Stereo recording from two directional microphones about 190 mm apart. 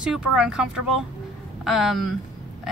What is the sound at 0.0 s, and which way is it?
Speech, 5° right (ahead or behind).